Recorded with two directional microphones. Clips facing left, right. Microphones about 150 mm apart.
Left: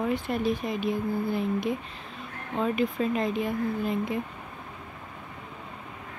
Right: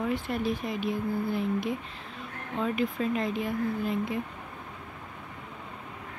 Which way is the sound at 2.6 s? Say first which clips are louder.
Left 2 dB; 25° left (ahead or behind).